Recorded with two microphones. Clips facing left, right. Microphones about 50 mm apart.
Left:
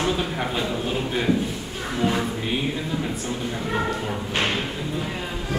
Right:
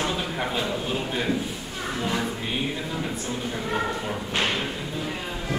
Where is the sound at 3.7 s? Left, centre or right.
Centre.